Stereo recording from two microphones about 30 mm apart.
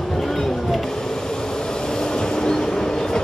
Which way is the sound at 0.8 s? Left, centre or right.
Left.